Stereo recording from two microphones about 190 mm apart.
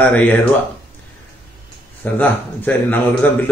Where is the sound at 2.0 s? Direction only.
10° left (ahead or behind).